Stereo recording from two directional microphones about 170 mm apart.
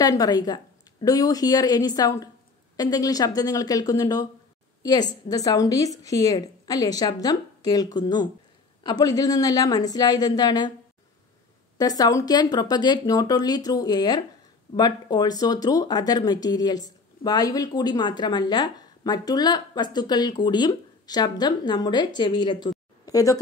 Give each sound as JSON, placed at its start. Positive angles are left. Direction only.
{"t": 0.0, "sound": "speech", "side_deg": 20}
{"t": 11.8, "sound": "speech", "side_deg": 20}